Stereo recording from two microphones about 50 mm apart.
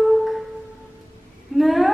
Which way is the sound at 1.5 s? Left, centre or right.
Centre.